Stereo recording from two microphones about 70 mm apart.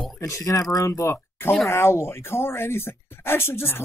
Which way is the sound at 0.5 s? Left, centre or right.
Left.